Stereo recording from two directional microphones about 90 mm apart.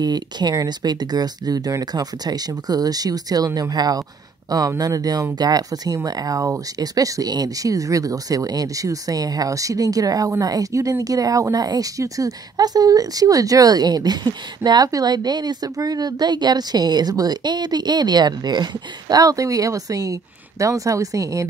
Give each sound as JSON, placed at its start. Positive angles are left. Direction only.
{"t": 0.0, "sound": "speech", "side_deg": -50}